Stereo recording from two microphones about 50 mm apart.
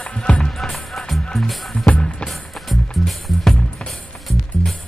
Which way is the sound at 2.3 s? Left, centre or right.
Centre.